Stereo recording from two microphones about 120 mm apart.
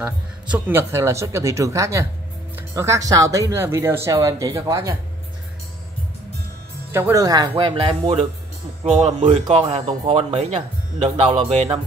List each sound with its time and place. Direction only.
0.0 s speech: 15° right (ahead or behind)
6.9 s speech: 25° right (ahead or behind); by 8.3 s 55° right (ahead or behind)
8.8 s speech: 70° right (ahead or behind)
9.5 s speech: 55° right (ahead or behind)